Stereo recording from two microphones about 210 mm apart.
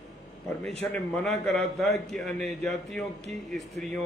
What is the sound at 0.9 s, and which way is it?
A man's voice, 5° left (ahead or behind).